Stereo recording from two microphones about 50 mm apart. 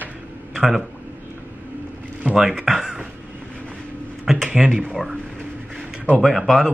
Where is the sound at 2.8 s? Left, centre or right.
Centre.